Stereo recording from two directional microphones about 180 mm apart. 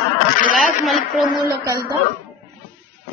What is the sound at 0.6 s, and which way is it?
Speech, centre (ahead or behind).